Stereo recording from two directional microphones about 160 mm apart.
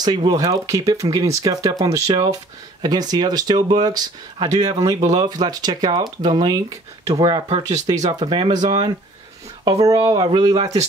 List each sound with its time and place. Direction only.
0.0 s speech: 25° right (ahead or behind)
9.7 s speech: 25° right (ahead or behind)